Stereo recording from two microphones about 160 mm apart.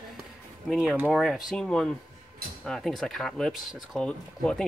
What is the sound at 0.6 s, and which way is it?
Speech, centre (ahead or behind).